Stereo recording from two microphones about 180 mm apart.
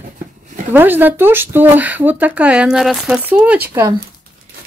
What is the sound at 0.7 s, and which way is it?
Speech, 10° right (ahead or behind).